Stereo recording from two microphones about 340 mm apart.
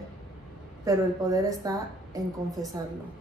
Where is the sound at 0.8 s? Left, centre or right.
Centre.